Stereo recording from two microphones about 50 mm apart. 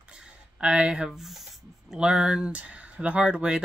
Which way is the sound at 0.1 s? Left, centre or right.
Centre.